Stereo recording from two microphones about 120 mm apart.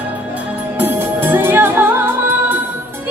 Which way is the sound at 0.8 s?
15° right (ahead or behind).